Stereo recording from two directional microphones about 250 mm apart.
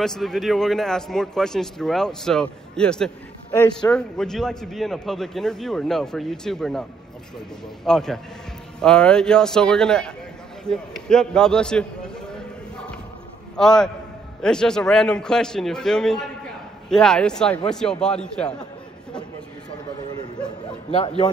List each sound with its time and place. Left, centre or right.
0.0 s a man's voice: centre
3.5 s speech: centre
3.9 s a man's voice: centre
10.6 s a sound: centre
13.6 s a man's voice: centre